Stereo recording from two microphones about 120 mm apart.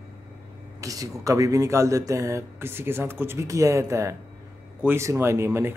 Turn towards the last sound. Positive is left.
turn(degrees=-20)  # may be behind; listen again after turning